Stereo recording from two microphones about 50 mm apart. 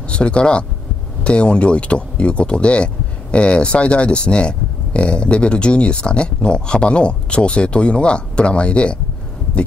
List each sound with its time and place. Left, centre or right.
0.1 s speech: left